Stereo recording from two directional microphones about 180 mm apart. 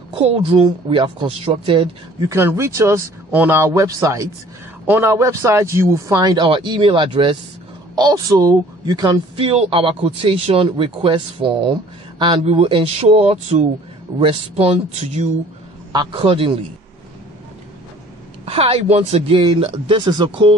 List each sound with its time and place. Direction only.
0.1 s speech: 30° right (ahead or behind)
2.2 s speech: 15° right (ahead or behind); by 16.5 s 30° right (ahead or behind)
18.4 s speech: 35° right (ahead or behind)